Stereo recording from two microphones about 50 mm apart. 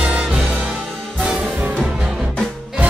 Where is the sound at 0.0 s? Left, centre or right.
Right.